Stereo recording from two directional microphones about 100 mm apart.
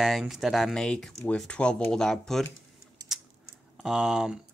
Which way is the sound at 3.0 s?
40° right (ahead or behind).